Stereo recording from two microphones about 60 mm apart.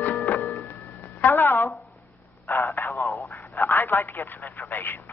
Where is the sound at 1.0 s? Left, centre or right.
Left.